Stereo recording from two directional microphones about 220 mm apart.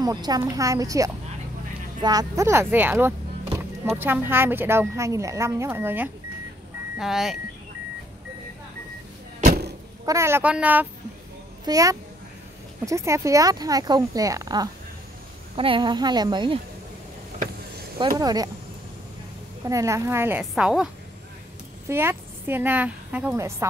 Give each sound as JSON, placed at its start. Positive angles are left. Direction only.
{"t": 0.0, "sound": "speech", "side_deg": -15}
{"t": 9.4, "sound": "vehicle", "side_deg": -45}
{"t": 10.0, "sound": "a woman's voice", "side_deg": -10}
{"t": 17.9, "sound": "speech", "side_deg": -20}
{"t": 19.7, "sound": "a woman's voice", "side_deg": -15}